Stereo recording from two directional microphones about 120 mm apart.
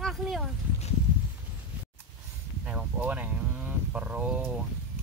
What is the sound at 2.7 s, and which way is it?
Speech, 10° right (ahead or behind).